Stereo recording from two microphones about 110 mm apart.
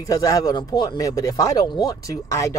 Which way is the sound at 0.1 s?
35° left (ahead or behind).